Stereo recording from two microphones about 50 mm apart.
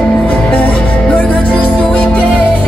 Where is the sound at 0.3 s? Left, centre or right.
Left.